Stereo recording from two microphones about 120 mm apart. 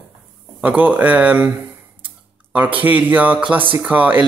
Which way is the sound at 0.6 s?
15° right (ahead or behind).